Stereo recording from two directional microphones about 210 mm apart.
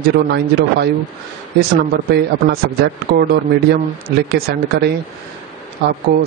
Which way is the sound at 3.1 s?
45° right (ahead or behind).